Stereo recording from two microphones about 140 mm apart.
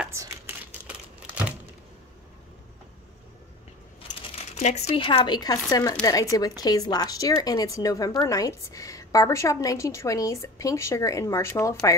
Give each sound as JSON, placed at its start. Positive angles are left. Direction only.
{"t": 0.1, "sound": "crumpling", "side_deg": -20}
{"t": 4.6, "sound": "a woman's voice", "side_deg": 55}